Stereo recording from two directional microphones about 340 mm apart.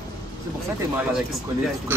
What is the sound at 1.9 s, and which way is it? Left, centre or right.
Speech, centre.